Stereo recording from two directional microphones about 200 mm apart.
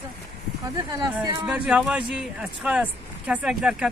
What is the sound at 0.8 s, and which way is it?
Speech, 20° right (ahead or behind).